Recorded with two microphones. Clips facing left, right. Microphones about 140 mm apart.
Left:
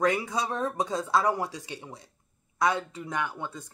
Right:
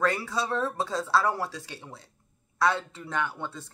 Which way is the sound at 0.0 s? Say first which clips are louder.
Left 1 dB; 15° left (ahead or behind).